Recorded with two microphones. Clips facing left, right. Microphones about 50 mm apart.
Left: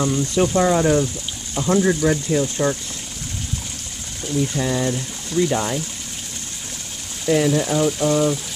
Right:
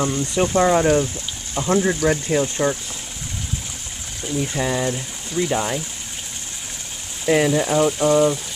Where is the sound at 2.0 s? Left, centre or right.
Right.